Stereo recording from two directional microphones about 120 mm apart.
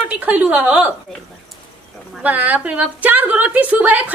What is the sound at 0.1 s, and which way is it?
Speech, 10° right (ahead or behind).